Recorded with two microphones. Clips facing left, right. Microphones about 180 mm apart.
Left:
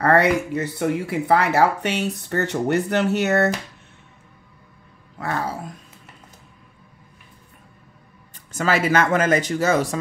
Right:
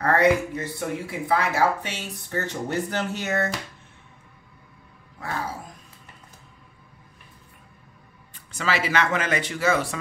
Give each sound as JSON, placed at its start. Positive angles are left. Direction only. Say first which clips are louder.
{"t": 0.0, "sound": "speech", "louder": "left 2 dB", "side_deg": 70}
{"t": 8.5, "sound": "speech", "louder": "left 6 dB", "side_deg": 45}